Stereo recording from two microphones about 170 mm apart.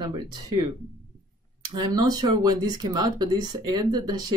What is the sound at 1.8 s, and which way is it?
Speech, 25° right (ahead or behind).